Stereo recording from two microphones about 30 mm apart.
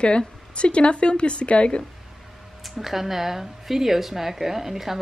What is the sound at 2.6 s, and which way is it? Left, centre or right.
Speech, centre.